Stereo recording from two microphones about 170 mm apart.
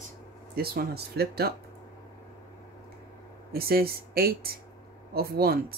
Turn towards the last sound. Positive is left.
turn(degrees=-65)  # may be behind; listen again after turning